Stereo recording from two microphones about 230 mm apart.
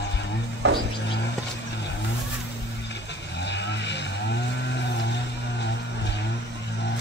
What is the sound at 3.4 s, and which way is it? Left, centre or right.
Vehicle, left.